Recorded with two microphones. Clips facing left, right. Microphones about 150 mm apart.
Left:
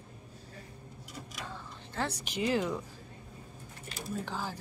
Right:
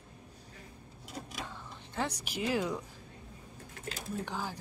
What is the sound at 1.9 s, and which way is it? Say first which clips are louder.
Speech: left 1 dB; 15° right (ahead or behind).